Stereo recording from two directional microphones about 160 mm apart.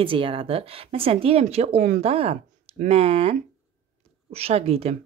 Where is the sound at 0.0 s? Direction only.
35° right (ahead or behind).